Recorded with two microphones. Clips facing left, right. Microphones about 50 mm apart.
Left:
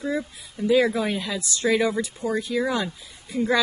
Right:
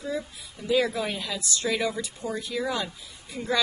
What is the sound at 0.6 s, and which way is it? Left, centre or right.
A woman's voice, left.